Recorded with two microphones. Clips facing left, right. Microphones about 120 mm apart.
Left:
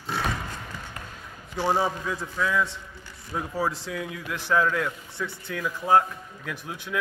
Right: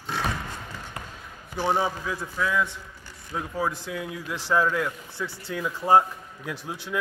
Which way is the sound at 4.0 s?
5° right (ahead or behind).